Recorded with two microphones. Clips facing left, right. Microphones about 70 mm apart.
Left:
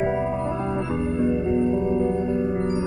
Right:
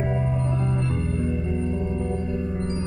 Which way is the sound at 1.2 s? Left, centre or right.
Centre.